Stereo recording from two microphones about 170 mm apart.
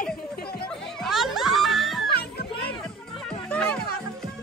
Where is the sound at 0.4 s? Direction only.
65° left (ahead or behind).